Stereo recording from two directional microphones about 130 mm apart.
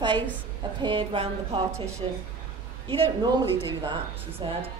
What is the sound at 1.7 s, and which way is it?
Speech, 20° right (ahead or behind).